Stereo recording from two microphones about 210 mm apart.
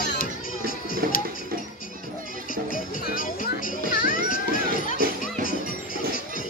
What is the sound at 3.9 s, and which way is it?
Music, 40° left (ahead or behind).